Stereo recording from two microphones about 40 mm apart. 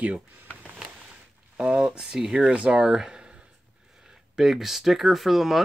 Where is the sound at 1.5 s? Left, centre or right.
Right.